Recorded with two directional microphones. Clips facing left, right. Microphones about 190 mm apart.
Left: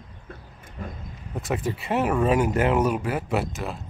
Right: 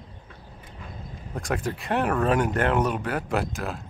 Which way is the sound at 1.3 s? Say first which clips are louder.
Left 1 dB; 5° left (ahead or behind).